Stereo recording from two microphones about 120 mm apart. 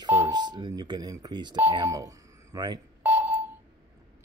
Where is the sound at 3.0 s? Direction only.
15° right (ahead or behind).